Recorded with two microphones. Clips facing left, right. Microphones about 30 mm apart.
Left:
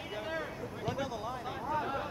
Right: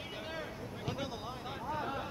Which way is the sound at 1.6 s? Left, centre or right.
Centre.